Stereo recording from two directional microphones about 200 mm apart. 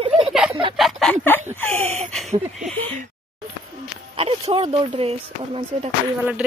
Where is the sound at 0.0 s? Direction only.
30° right (ahead or behind).